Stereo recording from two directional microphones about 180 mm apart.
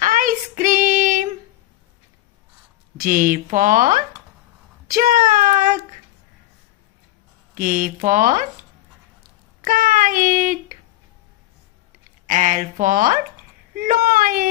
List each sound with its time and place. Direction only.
0.0 s child singing: 50° right (ahead or behind)
3.0 s a child's voice: 50° right (ahead or behind)
7.5 s speech: 50° right (ahead or behind)
9.7 s child singing: 45° right (ahead or behind)
12.3 s speech: 45° right (ahead or behind)
13.7 s a sound: 50° right (ahead or behind)